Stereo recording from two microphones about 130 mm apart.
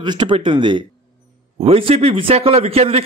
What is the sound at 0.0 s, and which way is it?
Speech, 35° right (ahead or behind).